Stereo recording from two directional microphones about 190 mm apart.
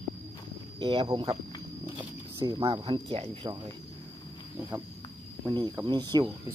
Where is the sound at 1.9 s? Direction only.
20° right (ahead or behind).